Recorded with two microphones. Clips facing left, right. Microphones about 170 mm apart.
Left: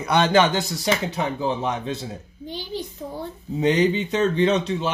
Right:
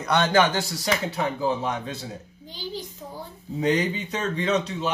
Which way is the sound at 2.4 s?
65° left (ahead or behind).